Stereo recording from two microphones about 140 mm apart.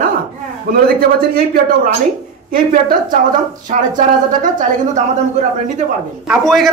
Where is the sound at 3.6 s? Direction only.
70° right (ahead or behind).